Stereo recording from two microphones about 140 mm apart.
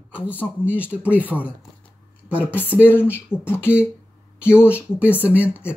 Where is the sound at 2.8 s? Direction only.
15° left (ahead or behind).